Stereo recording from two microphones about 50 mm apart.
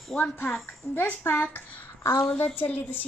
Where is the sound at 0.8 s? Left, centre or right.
Left.